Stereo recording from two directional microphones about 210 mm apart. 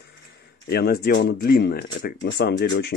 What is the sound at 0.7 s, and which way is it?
Speech, 50° left (ahead or behind).